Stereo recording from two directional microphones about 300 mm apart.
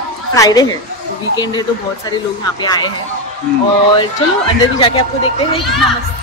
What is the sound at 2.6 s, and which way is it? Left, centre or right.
Speech, centre.